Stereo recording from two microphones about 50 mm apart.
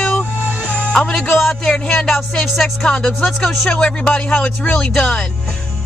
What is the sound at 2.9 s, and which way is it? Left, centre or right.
Speech, centre.